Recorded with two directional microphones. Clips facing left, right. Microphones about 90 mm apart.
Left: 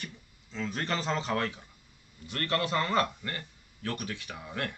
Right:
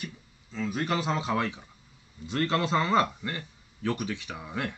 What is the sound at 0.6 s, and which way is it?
A man's voice, 10° right (ahead or behind).